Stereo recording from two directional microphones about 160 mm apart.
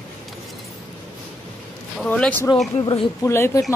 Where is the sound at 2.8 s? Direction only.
35° left (ahead or behind).